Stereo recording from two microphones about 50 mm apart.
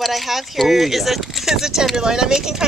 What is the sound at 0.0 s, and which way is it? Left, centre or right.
Speech, centre.